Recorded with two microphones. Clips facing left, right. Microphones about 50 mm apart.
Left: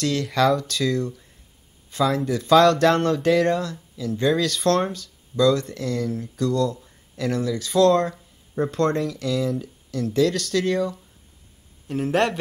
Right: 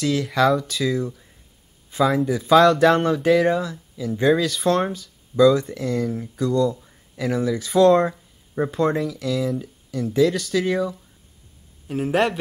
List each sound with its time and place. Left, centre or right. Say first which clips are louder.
0.0 s a man's voice: right 1 dB; centre